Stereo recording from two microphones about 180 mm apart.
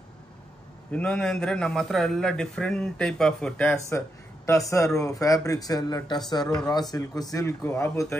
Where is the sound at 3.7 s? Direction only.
15° left (ahead or behind).